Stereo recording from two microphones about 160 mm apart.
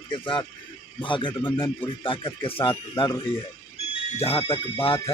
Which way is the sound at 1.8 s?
35° left (ahead or behind).